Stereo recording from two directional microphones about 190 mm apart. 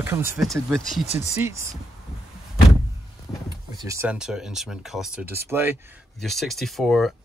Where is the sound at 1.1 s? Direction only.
35° left (ahead or behind).